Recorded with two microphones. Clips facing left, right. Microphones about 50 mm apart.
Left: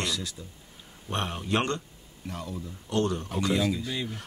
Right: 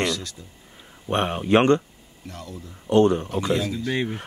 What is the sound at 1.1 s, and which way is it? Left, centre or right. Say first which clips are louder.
Speech: right 9 dB; right.